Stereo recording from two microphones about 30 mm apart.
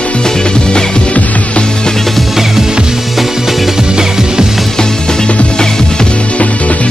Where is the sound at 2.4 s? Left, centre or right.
Centre.